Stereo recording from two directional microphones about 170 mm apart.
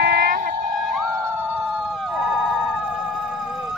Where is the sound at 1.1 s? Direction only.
15° right (ahead or behind).